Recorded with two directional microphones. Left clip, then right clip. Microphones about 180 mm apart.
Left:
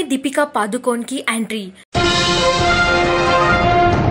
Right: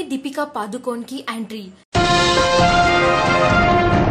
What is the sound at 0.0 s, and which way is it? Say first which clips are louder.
Speech: left 6 dB; 25° left (ahead or behind).